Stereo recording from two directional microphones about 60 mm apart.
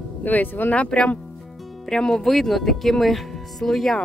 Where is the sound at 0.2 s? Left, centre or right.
Left.